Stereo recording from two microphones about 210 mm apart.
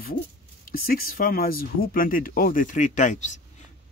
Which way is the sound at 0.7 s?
45° left (ahead or behind).